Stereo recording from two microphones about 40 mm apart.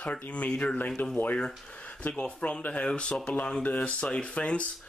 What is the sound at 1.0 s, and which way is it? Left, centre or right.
Speech, left.